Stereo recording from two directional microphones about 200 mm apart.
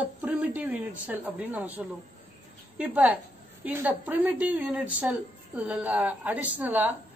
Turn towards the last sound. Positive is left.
turn(degrees=-10)  # may be behind; listen again after turning